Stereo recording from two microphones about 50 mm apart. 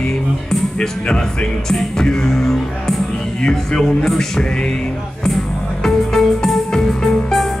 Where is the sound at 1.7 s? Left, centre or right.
Centre.